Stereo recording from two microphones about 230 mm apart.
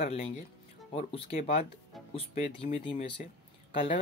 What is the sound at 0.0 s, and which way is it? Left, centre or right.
Speech, left.